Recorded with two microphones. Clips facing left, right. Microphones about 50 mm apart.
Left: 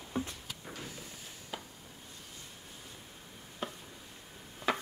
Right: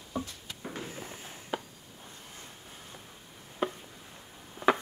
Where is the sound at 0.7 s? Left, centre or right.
Right.